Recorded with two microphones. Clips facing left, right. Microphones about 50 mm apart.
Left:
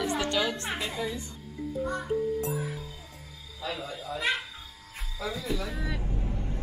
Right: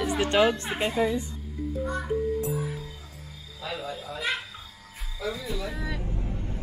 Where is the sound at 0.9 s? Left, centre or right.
Right.